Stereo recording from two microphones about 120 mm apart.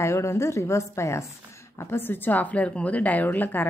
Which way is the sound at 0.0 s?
25° left (ahead or behind).